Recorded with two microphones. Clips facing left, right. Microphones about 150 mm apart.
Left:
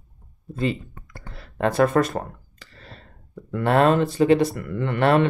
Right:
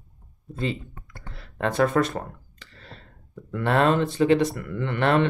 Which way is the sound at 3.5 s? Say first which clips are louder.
Left 3 dB; 40° left (ahead or behind).